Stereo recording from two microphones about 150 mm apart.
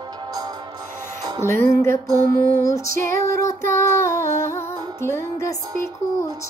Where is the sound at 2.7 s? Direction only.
20° left (ahead or behind).